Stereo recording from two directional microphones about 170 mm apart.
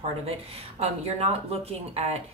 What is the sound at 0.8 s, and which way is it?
Speech, 35° right (ahead or behind).